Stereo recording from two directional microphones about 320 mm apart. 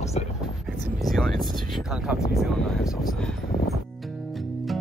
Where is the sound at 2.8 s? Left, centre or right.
Centre.